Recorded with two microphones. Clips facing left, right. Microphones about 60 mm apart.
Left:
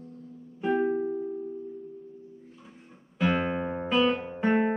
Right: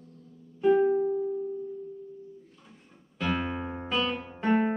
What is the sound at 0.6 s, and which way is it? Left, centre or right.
Music, centre.